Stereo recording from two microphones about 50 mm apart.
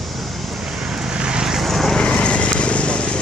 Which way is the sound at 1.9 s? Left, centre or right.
Left.